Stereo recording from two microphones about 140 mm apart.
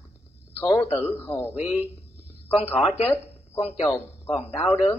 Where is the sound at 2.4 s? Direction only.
45° left (ahead or behind).